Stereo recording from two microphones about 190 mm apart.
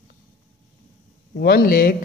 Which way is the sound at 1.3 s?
55° left (ahead or behind).